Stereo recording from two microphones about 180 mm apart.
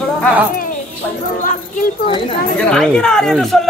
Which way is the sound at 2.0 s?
30° left (ahead or behind).